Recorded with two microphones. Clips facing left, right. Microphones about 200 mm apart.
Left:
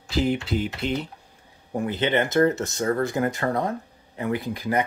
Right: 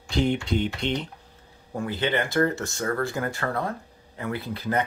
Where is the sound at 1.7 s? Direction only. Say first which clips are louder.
Left 3 dB; 20° left (ahead or behind).